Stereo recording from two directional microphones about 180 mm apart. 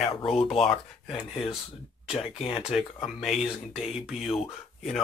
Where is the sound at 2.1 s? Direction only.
30° left (ahead or behind).